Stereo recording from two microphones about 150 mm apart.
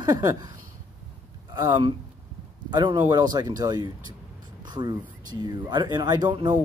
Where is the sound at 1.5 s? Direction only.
25° right (ahead or behind).